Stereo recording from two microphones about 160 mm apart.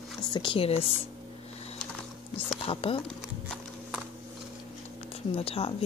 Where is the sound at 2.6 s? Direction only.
35° left (ahead or behind).